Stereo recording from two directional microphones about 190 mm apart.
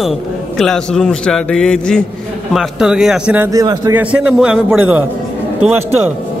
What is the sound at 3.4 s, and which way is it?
Music, 20° right (ahead or behind).